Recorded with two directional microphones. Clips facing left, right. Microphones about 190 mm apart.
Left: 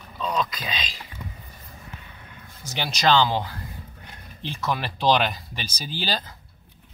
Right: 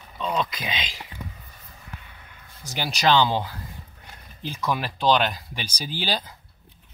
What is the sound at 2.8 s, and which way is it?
Speech, 10° right (ahead or behind).